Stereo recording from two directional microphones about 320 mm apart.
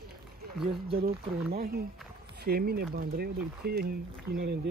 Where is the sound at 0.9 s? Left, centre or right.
Right.